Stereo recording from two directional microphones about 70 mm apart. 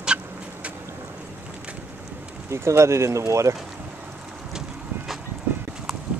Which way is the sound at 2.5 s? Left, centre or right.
Right.